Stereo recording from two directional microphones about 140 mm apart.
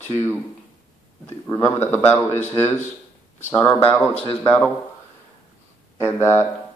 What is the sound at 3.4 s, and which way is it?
Speech, 15° left (ahead or behind).